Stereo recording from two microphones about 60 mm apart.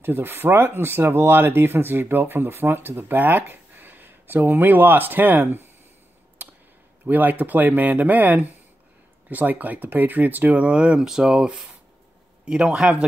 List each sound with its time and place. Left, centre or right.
0.0 s speech: right
7.1 s speech: right; by 12.9 s centre